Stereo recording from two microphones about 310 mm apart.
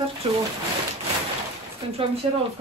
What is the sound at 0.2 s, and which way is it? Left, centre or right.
Speech, centre.